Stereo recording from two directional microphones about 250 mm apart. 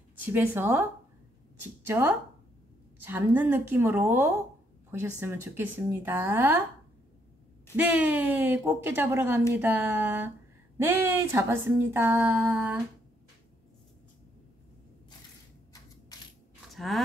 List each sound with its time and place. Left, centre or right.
0.2 s speech: centre
7.7 s speech: centre
16.7 s speech: centre